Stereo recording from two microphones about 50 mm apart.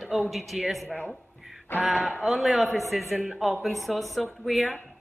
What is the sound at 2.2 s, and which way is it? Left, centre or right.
A woman's voice, centre.